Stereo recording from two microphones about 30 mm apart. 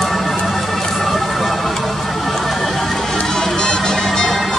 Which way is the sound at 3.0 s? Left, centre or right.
Centre.